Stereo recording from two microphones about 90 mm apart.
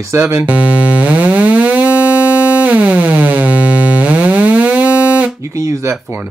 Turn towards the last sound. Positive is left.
turn(degrees=-35)  # may be behind; listen again after turning